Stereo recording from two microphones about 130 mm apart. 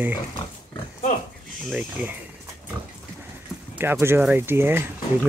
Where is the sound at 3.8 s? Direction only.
15° right (ahead or behind).